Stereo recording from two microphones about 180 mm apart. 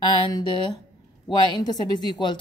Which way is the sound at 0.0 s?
25° left (ahead or behind).